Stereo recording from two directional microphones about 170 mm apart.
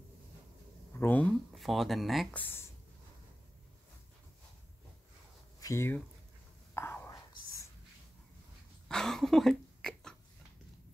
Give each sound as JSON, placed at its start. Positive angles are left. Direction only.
{"t": 0.9, "sound": "speech", "side_deg": 10}
{"t": 5.6, "sound": "speech", "side_deg": 15}
{"t": 6.7, "sound": "whispering", "side_deg": 15}
{"t": 8.8, "sound": "a sound", "side_deg": 5}